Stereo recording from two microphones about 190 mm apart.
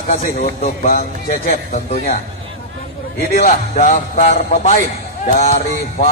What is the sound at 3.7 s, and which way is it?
A man's voice, 40° left (ahead or behind).